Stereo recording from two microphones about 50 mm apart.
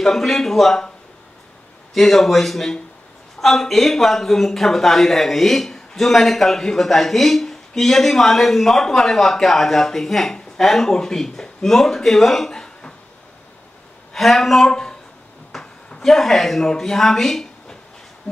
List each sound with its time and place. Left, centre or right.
0.0 s a man's voice: centre
2.0 s a man's voice: centre
14.1 s a man's voice: centre
15.6 s a sound: centre
16.1 s a man's voice: centre